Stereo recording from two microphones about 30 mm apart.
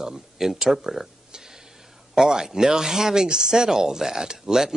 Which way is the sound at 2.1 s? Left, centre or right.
Centre.